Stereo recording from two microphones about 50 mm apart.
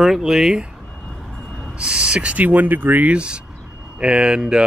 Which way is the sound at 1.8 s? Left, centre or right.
Centre.